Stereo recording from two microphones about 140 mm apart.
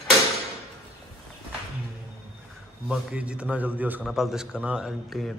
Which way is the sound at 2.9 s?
10° right (ahead or behind).